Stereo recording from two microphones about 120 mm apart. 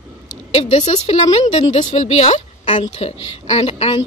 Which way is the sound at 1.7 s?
85° left.